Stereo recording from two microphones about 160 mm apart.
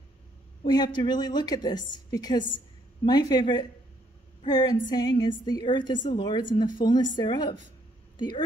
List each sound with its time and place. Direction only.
0.7 s a woman's voice: 25° left (ahead or behind)
4.4 s a sound: 25° left (ahead or behind)
4.9 s a woman's voice: 25° left (ahead or behind)